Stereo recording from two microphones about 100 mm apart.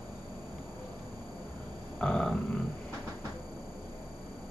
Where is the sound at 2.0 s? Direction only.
10° left (ahead or behind).